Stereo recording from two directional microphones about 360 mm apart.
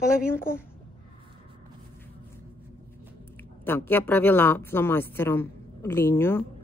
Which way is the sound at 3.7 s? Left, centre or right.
Centre.